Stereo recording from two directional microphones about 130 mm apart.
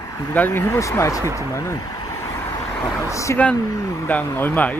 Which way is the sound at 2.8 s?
25° left (ahead or behind).